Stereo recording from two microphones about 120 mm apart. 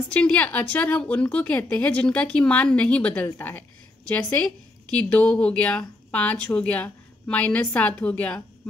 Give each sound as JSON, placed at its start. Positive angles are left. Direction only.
{"t": 0.1, "sound": "a woman's voice", "side_deg": 10}
{"t": 4.9, "sound": "a woman's voice", "side_deg": 10}